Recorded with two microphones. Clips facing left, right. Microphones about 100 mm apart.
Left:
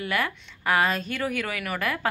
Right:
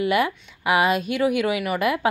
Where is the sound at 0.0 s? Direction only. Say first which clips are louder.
Right 7 dB; 15° right (ahead or behind).